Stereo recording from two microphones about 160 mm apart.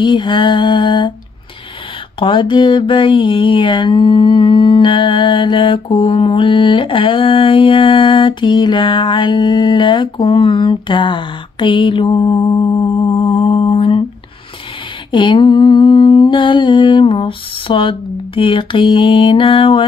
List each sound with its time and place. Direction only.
0.0 s a sound: 30° left (ahead or behind)
2.1 s mantra: 30° left (ahead or behind)
15.0 s mantra: 30° left (ahead or behind)